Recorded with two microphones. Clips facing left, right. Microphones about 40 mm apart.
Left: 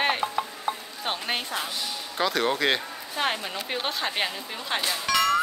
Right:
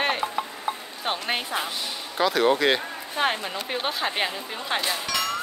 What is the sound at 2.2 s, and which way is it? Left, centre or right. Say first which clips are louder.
Speech: right 4 dB; centre.